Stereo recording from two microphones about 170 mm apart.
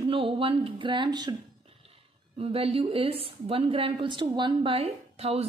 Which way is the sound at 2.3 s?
35° right (ahead or behind).